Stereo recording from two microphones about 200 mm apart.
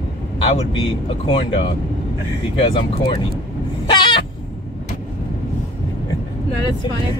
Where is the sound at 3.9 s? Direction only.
25° left (ahead or behind).